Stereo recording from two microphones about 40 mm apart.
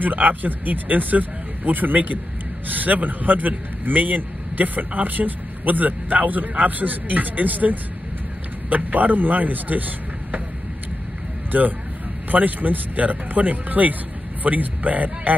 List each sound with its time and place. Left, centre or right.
0.0 s speech: right
11.5 s speech: right